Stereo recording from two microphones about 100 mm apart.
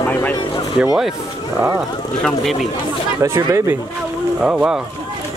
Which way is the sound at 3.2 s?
35° right (ahead or behind).